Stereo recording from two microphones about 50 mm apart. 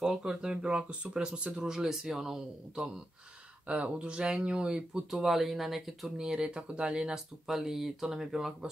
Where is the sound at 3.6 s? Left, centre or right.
Right.